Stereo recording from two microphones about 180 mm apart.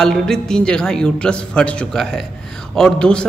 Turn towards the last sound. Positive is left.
turn(degrees=5)  # may be behind; listen again after turning